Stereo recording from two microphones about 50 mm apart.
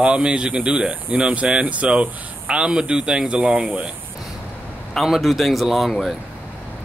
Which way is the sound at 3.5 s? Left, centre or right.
Right.